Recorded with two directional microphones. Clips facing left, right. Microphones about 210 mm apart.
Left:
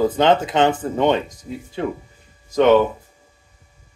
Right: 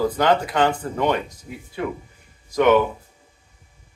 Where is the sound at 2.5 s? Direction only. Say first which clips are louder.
Left 3 dB; 25° left (ahead or behind).